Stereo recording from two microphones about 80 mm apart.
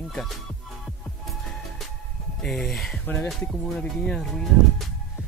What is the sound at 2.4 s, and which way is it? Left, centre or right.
Speech, centre.